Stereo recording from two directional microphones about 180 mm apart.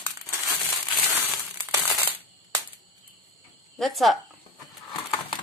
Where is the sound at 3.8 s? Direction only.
Centre (ahead or behind).